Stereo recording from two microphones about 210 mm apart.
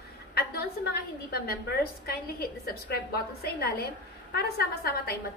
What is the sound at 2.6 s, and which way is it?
A woman's voice, 45° left (ahead or behind).